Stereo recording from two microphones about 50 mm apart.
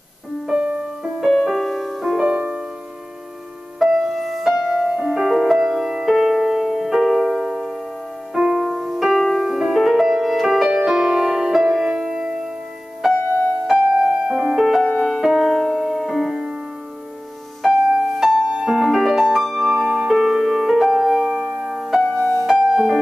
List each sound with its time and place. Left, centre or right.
0.5 s music: right
1.2 s music: centre
2.3 s music: right
3.8 s music: centre
5.0 s music: centre
13.9 s piano: right
14.3 s music: centre
15.5 s music: centre
17.6 s music: centre
22.2 s music: centre